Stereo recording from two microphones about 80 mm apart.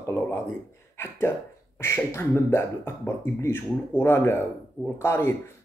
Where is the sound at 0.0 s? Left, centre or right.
Left.